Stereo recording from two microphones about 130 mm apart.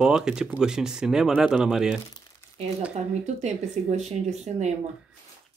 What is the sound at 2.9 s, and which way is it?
Speech, 60° right (ahead or behind).